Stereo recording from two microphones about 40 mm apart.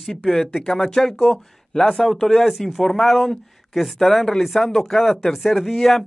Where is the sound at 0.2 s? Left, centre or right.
Centre.